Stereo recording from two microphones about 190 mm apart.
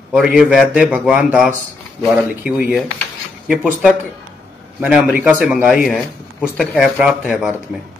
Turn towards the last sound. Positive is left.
turn(degrees=0)  # may be behind; listen again after turning